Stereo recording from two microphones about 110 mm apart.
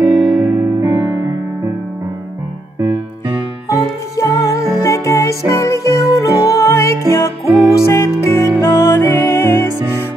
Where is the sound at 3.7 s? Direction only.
25° left (ahead or behind).